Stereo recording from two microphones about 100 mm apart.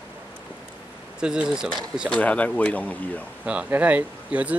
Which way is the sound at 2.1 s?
15° left (ahead or behind).